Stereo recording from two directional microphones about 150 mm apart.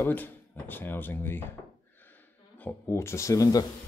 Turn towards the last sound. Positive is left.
turn(degrees=25)  # may be behind; listen again after turning